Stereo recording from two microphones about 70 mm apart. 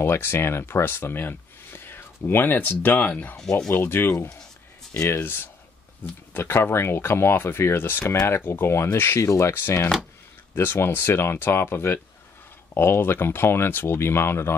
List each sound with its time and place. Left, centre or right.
0.0 s speech: left
3.8 s speech: left
8.0 s speech: left
9.5 s speech: left